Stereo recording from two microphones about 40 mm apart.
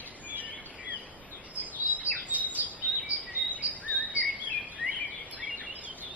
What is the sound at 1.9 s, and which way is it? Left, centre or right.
Bird, right.